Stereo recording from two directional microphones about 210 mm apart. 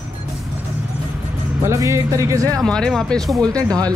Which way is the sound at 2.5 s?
5° left (ahead or behind).